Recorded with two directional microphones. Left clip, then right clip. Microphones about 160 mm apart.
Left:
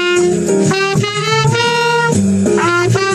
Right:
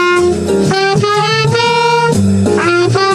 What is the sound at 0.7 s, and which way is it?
Music, 25° left (ahead or behind).